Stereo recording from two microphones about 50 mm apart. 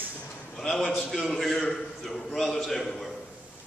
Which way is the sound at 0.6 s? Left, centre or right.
Centre.